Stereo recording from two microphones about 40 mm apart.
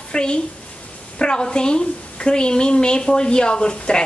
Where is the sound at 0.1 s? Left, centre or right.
Left.